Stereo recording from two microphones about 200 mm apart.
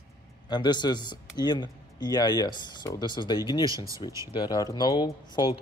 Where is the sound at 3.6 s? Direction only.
15° right (ahead or behind).